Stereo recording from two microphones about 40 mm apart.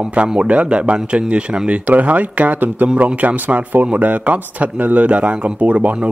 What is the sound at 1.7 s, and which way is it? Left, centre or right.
Speech, right.